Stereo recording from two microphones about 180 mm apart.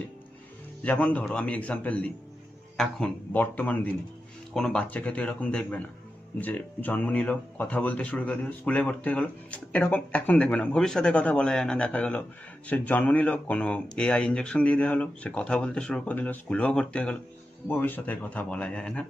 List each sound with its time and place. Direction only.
0.8 s speech: 10° left (ahead or behind)